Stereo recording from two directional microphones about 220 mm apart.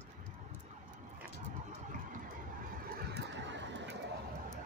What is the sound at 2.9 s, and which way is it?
Vehicle, 50° right (ahead or behind).